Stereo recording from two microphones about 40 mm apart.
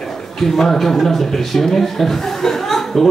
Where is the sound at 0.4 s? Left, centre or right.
Centre.